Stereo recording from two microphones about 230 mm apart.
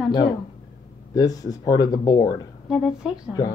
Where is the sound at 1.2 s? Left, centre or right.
Centre.